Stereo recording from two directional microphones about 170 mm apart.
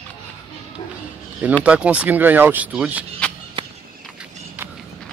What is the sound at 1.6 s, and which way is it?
Speech, 5° right (ahead or behind).